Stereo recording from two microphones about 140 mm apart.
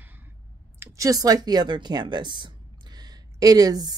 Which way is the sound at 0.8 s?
25° right (ahead or behind).